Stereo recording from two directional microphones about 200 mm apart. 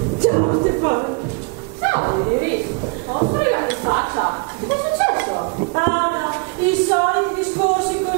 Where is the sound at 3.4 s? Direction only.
15° right (ahead or behind).